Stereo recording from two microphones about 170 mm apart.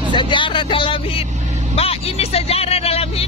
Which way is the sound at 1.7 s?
35° left (ahead or behind).